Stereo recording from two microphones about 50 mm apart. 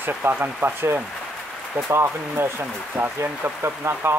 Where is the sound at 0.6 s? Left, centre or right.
Right.